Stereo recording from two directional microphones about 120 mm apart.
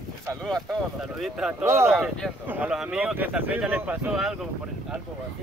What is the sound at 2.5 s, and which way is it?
Speech, 10° right (ahead or behind).